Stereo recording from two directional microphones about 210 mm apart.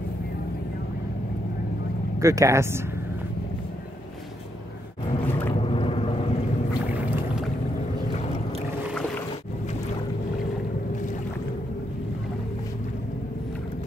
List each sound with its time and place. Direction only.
2.1 s speech: 15° right (ahead or behind)
5.6 s boat: 25° left (ahead or behind)